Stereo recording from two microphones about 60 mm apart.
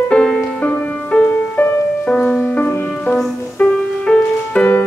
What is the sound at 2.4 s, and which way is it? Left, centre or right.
Music, left.